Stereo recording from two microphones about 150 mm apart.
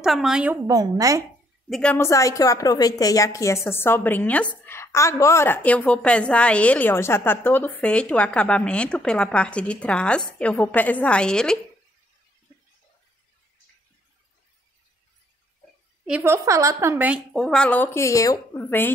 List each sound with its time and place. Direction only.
0.0 s a woman's voice: centre (ahead or behind)
0.7 s a woman's voice: 25° right (ahead or behind)
1.7 s a woman's voice: 5° left (ahead or behind)
2.0 s a woman's voice: 20° left (ahead or behind)
16.1 s a woman's voice: 15° right (ahead or behind); by 18.9 s 15° left (ahead or behind)